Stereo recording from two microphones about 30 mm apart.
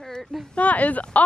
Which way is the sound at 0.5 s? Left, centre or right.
Left.